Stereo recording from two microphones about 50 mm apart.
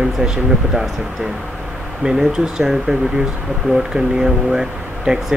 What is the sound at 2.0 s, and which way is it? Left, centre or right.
Speech, centre.